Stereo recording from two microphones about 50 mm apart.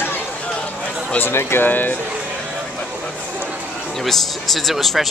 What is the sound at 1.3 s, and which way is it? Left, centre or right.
Speech, left.